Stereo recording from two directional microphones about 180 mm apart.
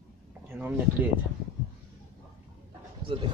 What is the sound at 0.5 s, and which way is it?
Speech, 10° right (ahead or behind).